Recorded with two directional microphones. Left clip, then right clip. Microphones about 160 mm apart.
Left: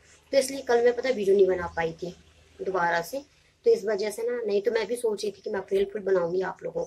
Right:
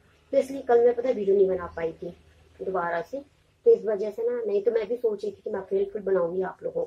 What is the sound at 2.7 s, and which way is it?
A woman's voice, 15° left (ahead or behind).